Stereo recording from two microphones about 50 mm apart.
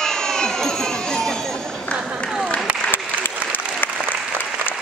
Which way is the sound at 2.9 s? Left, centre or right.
Left.